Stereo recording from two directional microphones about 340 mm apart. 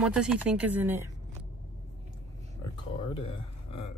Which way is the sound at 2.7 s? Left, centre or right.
Centre.